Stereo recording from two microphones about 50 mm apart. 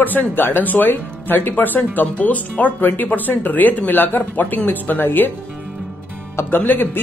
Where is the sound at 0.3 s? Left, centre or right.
Left.